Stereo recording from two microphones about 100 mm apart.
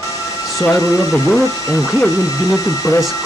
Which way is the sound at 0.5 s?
35° left (ahead or behind).